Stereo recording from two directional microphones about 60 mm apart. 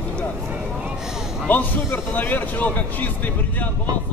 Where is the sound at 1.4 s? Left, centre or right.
Left.